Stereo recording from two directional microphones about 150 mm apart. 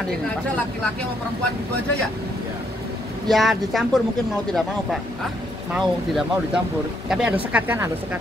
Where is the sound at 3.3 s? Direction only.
Centre (ahead or behind).